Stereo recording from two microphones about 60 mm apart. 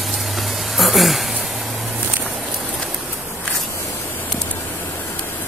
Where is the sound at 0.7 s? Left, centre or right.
Centre.